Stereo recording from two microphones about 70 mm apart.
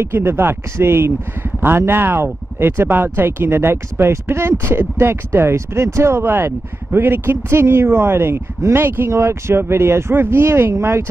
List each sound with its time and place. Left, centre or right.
0.0 s speech: right